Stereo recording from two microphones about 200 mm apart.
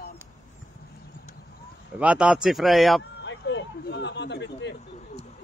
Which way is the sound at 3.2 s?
65° left (ahead or behind).